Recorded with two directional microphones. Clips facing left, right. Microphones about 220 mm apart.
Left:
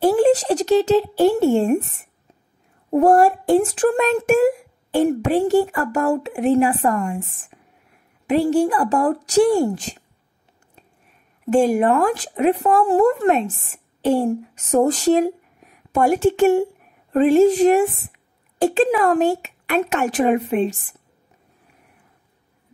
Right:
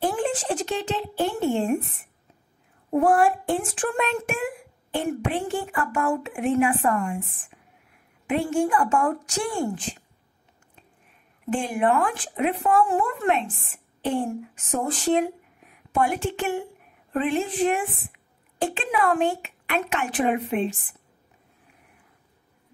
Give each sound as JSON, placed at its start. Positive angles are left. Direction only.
{"t": 0.0, "sound": "speech", "side_deg": 40}
{"t": 2.9, "sound": "speech", "side_deg": 40}
{"t": 8.3, "sound": "speech", "side_deg": 35}
{"t": 11.5, "sound": "a woman's voice", "side_deg": 40}